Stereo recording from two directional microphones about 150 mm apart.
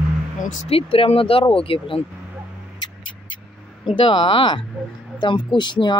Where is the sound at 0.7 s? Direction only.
40° left (ahead or behind).